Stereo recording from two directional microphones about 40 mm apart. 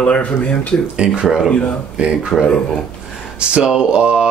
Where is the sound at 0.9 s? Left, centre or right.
Right.